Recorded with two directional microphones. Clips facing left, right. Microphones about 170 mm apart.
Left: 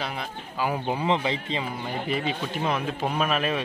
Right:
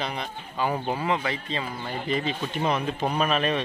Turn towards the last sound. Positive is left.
turn(degrees=5)  # may be behind; listen again after turning